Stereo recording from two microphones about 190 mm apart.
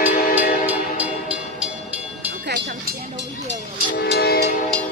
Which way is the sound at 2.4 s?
55° right (ahead or behind).